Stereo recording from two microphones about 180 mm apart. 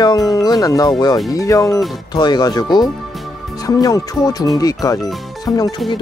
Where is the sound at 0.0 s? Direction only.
20° left (ahead or behind).